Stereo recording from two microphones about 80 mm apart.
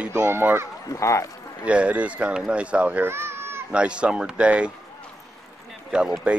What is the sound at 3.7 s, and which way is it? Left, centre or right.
Speech, centre.